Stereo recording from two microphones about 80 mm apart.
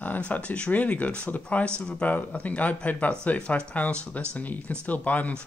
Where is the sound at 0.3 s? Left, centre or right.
Centre.